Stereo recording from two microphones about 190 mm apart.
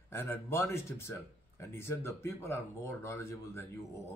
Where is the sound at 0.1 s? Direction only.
15° left (ahead or behind).